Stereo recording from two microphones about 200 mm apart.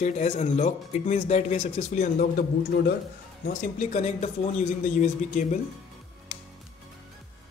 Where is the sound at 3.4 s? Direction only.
40° left (ahead or behind).